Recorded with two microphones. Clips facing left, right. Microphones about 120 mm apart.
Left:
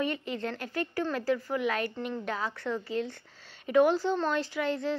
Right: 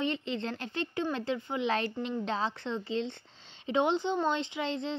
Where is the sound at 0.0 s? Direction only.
25° right (ahead or behind).